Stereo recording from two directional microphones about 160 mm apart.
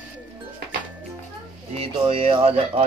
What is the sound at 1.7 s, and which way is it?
Speech, 35° right (ahead or behind).